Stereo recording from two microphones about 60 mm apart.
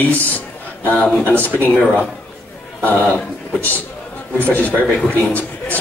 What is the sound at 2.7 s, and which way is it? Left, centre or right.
A man's voice, left.